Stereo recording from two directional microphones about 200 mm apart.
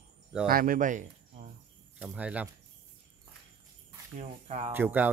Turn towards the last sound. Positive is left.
turn(degrees=-10)  # may be behind; listen again after turning